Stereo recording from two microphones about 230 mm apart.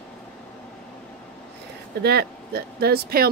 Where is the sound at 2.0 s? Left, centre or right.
Right.